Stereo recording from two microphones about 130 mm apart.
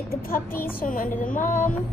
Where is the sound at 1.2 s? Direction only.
85° left.